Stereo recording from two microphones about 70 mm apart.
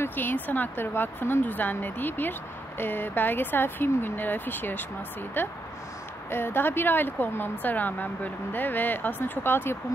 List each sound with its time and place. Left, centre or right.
0.0 s speech: left